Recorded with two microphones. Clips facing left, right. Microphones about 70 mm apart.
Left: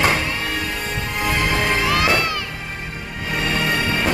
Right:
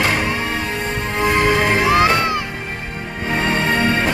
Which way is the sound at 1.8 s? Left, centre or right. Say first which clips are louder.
Right 4 dB; right.